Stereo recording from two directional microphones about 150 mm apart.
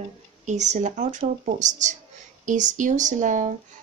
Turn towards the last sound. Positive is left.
turn(degrees=-55)  # may be behind; listen again after turning